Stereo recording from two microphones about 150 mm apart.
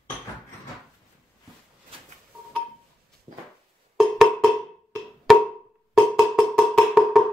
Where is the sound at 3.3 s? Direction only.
55° right (ahead or behind).